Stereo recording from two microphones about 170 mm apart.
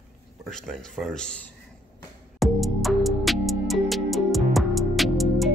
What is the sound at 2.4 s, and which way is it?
Music, centre (ahead or behind).